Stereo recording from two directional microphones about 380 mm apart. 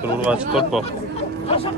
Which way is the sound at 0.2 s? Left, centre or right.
Centre.